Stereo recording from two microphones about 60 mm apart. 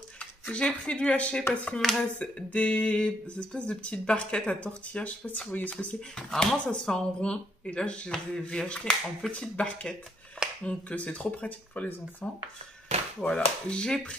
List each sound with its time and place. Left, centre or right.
0.5 s speech: centre
1.8 s speech: centre
2.3 s speech: left
5.9 s speech: centre
13.3 s speech: centre